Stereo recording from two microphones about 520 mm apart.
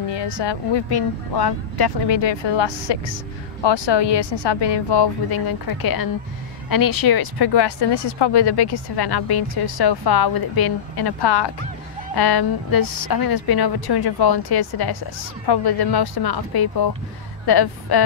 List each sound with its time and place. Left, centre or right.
0.1 s speech: left